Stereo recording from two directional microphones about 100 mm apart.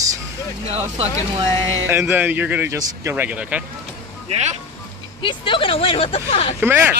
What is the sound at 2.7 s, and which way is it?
Speech, 30° right (ahead or behind).